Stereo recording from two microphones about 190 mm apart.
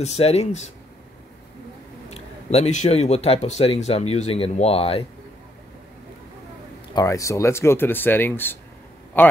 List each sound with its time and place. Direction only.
0.0 s speech: 35° left (ahead or behind)
2.0 s speech: 35° left (ahead or behind)
6.9 s speech: 20° left (ahead or behind)